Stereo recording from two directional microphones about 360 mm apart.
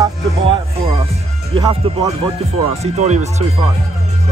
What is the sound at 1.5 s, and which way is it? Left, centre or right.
Speech, centre.